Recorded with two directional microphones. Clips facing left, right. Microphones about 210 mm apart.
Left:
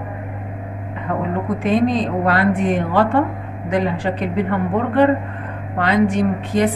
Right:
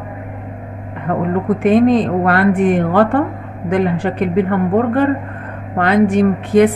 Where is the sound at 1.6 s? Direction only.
55° right (ahead or behind).